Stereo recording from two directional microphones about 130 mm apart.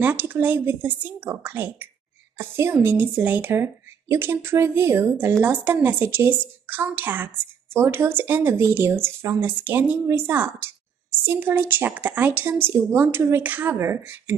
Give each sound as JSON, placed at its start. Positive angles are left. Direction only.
{"t": 0.0, "sound": "speech", "side_deg": -15}